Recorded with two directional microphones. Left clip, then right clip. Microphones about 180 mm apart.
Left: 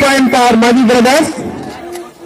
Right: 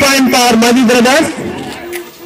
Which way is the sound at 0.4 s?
20° right (ahead or behind).